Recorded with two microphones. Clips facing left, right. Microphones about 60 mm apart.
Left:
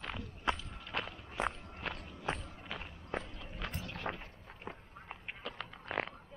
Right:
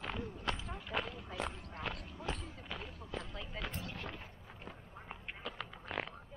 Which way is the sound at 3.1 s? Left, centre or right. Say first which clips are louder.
Left 4 dB; left.